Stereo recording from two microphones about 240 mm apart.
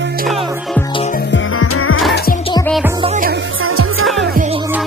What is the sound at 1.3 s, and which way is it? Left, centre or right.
Music, left.